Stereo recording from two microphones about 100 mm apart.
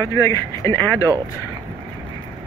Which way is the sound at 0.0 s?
35° left (ahead or behind).